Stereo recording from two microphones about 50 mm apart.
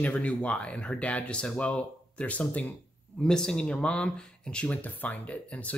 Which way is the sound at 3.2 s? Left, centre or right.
Centre.